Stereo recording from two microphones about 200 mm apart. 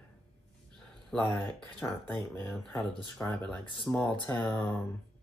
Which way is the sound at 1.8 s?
15° left (ahead or behind).